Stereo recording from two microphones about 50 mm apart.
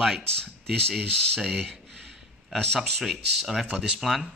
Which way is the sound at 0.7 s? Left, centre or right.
Centre.